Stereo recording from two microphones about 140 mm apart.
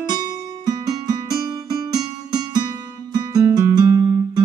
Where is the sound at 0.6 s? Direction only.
30° right (ahead or behind).